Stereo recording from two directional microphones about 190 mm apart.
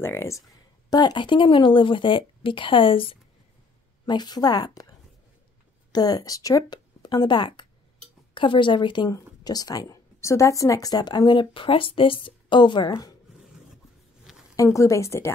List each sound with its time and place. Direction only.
0.0 s a woman's voice: 15° left (ahead or behind)
5.9 s speech: 20° left (ahead or behind)
14.5 s a woman's voice: 15° left (ahead or behind)